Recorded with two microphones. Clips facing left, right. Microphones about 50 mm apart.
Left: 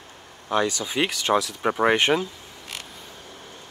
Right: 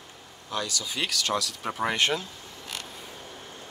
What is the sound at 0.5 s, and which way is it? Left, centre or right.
Speech, left.